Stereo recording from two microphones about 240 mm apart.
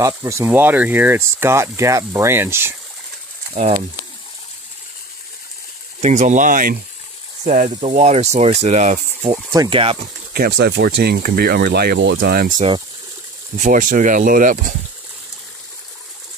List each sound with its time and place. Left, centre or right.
0.0 s speech: centre
3.5 s speech: right
5.9 s speech: right
9.5 s speech: centre
10.3 s speech: right